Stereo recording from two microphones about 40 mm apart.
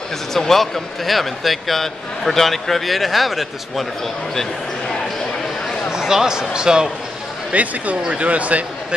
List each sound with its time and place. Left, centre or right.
0.3 s speech: centre
5.9 s speech: centre
7.5 s speech: right